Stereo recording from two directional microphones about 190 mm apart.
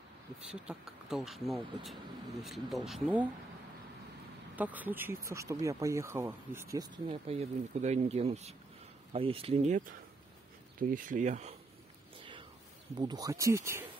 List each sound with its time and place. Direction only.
0.7 s speech: centre (ahead or behind)
4.6 s speech: 10° right (ahead or behind)
7.1 s speech: 30° right (ahead or behind)
10.8 s speech: 45° right (ahead or behind)
12.2 s a sound: 25° right (ahead or behind)
12.9 s speech: 20° right (ahead or behind)